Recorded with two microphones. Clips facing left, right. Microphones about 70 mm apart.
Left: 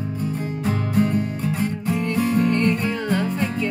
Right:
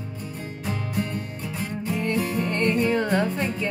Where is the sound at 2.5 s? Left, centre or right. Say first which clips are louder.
Left 1 dB; right.